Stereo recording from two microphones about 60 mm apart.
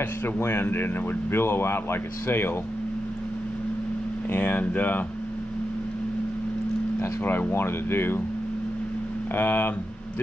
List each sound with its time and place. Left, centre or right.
0.4 s speech: left
4.3 s speech: left
7.0 s speech: left
9.3 s speech: left